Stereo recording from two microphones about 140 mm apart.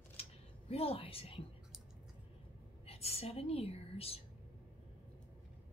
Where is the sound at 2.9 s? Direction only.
45° left (ahead or behind).